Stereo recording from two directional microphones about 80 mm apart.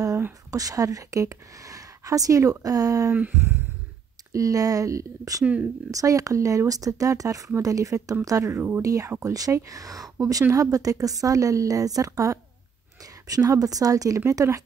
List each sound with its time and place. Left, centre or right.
0.5 s speech: right
3.2 s a sound: right
4.3 s speech: right
5.4 s speech: centre
5.9 s speech: right
8.5 s a sound: right
8.8 s speech: right